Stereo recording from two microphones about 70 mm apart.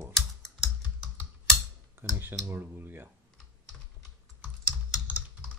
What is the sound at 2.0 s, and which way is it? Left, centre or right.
Speech, right.